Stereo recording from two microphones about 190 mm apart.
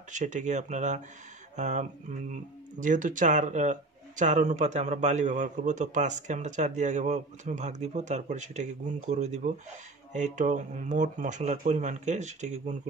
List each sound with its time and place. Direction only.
0.1 s a man's voice: 40° right (ahead or behind)